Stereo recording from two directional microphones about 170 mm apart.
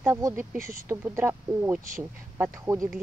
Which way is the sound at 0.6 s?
55° right (ahead or behind).